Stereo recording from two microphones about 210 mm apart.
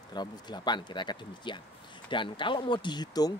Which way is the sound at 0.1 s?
20° left (ahead or behind).